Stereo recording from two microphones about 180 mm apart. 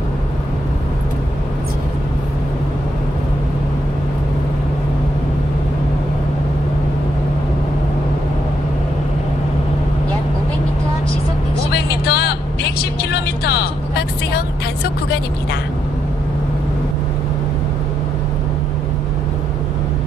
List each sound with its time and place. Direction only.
11.7 s vehicle: 65° left (ahead or behind)